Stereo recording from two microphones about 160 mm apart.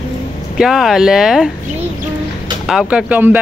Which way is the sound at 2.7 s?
5° right (ahead or behind).